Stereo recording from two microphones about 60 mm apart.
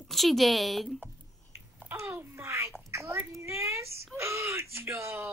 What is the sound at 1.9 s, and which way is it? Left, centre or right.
Speech, right.